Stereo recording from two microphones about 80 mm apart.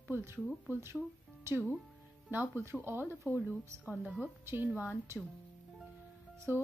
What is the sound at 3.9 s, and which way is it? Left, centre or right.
Speech, centre.